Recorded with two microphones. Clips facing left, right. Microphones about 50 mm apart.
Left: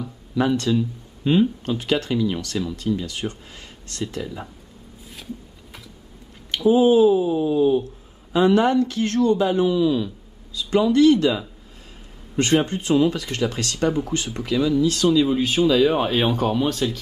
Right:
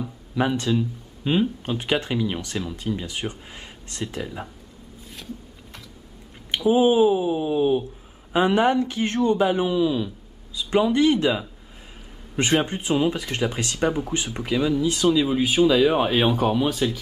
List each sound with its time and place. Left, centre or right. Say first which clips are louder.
0.0 s speech: left 2 dB; centre
6.5 s speech: left 2 dB; centre
10.5 s speech: left 2 dB; centre
12.6 s speech: left 3 dB; centre